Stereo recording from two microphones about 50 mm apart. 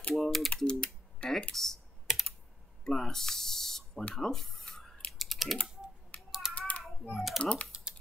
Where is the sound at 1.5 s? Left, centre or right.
Centre.